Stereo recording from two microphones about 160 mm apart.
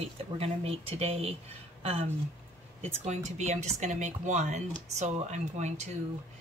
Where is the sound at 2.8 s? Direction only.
45° right (ahead or behind).